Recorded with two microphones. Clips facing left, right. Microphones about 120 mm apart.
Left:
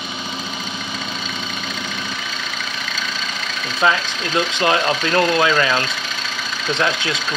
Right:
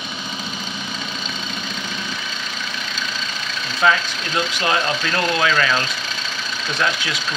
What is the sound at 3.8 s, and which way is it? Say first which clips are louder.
Speech: even; 25° left (ahead or behind).